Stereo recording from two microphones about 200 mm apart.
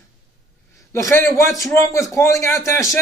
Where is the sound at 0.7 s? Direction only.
15° left (ahead or behind).